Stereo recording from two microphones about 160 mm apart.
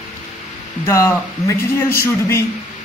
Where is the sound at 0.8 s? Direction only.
20° left (ahead or behind).